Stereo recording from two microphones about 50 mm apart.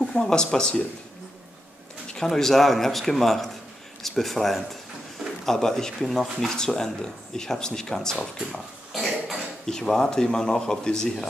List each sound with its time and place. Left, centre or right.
0.0 s speech: centre
2.1 s speech: centre
8.5 s a sound: centre
9.7 s speech: centre